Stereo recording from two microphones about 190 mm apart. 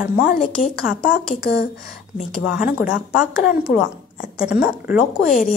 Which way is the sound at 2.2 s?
Centre (ahead or behind).